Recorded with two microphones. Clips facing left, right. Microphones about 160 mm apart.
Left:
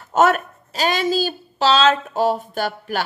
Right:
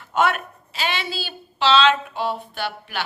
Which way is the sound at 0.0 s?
40° left (ahead or behind).